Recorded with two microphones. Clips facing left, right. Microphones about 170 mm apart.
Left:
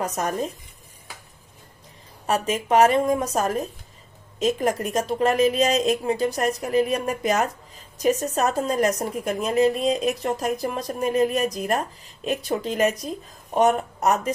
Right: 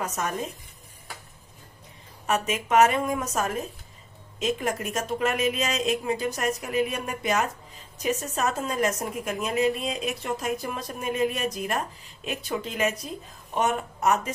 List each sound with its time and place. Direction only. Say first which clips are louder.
0.0 s a woman's voice: left 4 dB; 35° left (ahead or behind)
2.2 s a woman's voice: left 3 dB; 35° left (ahead or behind)